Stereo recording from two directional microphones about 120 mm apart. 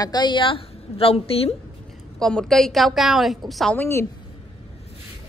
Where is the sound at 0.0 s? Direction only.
35° left (ahead or behind); by 1.6 s 55° left (ahead or behind).